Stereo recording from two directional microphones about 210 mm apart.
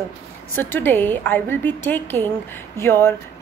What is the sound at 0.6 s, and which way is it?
A woman's voice, 10° left (ahead or behind).